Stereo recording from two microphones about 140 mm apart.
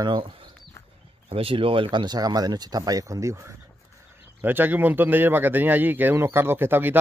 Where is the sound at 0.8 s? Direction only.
20° left (ahead or behind).